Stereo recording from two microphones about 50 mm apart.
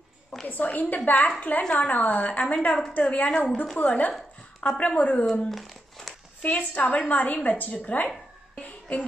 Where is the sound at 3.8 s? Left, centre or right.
Left.